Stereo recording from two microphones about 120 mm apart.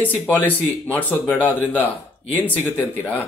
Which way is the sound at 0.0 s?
15° left (ahead or behind).